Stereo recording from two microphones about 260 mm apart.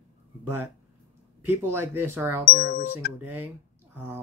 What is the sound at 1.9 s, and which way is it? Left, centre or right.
Speech, centre.